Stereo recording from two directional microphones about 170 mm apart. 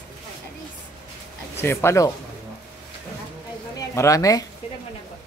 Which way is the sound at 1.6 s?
15° left (ahead or behind).